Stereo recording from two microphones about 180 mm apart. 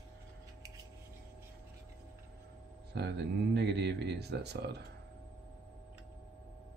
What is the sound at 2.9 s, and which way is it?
Speech, 65° right (ahead or behind).